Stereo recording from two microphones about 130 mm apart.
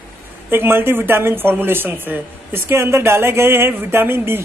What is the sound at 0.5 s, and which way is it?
Speech, 15° right (ahead or behind).